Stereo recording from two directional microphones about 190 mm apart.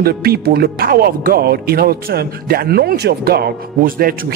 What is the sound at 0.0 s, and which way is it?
Speech, 55° right (ahead or behind).